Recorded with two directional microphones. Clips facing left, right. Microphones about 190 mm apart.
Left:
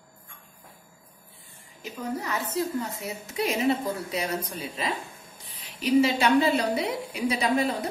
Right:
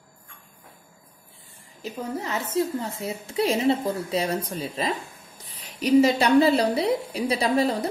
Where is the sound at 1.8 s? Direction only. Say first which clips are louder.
Right 2 dB; 25° right (ahead or behind).